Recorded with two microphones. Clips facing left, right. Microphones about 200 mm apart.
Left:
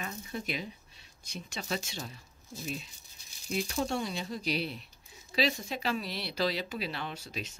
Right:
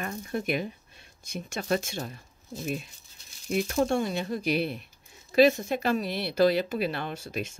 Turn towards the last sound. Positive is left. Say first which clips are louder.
# right 6 dB
turn(degrees=-50)  # may be behind; listen again after turning